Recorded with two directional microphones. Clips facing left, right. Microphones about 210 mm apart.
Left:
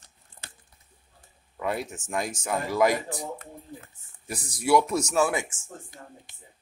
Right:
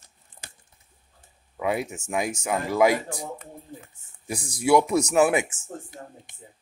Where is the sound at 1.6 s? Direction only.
10° right (ahead or behind).